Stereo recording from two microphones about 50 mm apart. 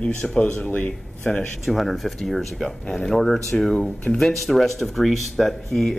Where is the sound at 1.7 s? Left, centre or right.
Centre.